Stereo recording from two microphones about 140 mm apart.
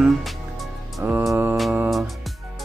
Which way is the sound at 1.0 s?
15° right (ahead or behind).